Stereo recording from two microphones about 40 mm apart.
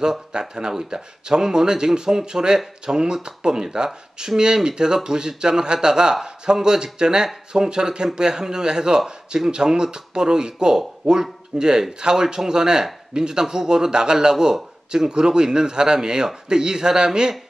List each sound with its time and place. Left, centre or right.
0.0 s a man's voice: centre